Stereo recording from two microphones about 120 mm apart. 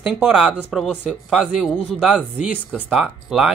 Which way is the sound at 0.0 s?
5° right (ahead or behind).